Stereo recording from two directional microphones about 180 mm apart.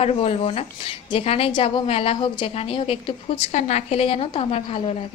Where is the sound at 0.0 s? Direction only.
35° left (ahead or behind).